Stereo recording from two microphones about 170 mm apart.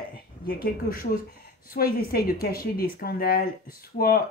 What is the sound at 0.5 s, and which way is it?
Speech, 60° left (ahead or behind).